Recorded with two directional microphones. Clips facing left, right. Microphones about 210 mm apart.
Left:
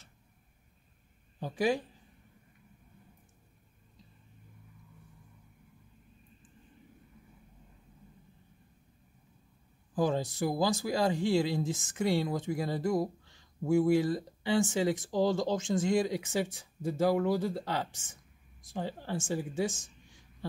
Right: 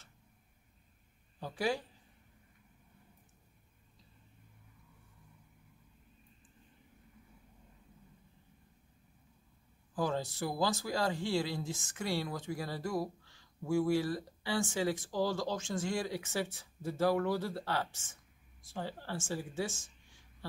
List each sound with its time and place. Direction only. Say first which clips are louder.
1.4 s speech: left 5 dB; 15° left (ahead or behind)
9.9 s speech: left 5 dB; 20° left (ahead or behind)